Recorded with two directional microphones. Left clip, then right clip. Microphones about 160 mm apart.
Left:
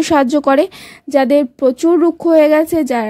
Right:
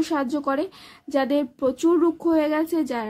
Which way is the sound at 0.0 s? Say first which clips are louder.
Left 12 dB; 50° left (ahead or behind).